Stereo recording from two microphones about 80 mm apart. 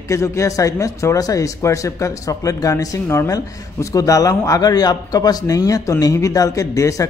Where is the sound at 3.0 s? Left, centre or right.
Left.